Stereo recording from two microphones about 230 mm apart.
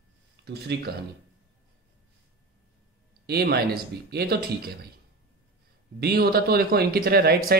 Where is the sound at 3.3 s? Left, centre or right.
Right.